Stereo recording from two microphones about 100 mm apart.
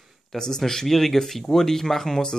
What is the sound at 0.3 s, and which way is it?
Speech, 5° left (ahead or behind).